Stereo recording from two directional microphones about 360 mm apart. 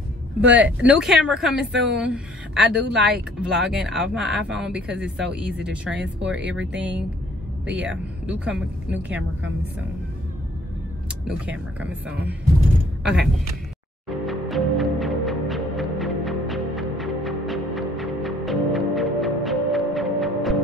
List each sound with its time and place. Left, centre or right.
0.5 s speech: centre
7.6 s speech: right
8.3 s speech: centre
11.2 s speech: centre
14.0 s music: centre